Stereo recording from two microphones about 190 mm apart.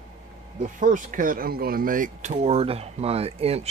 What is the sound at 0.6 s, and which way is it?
Speech, 45° right (ahead or behind).